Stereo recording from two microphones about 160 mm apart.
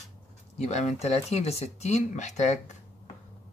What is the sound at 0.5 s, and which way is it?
Speech, 45° left (ahead or behind).